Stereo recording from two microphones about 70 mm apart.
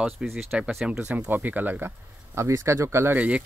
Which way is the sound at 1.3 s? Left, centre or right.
Right.